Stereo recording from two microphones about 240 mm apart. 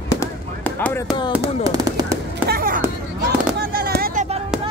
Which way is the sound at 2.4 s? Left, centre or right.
Right.